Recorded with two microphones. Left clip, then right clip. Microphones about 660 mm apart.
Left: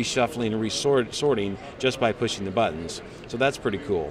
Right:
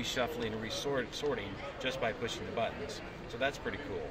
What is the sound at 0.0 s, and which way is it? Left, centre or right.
Speech, left.